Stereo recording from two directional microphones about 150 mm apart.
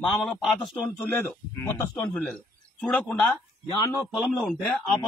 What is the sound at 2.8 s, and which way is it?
Speech, 5° left (ahead or behind).